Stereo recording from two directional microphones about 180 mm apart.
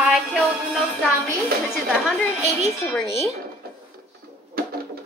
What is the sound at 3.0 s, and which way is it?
Speech, centre (ahead or behind).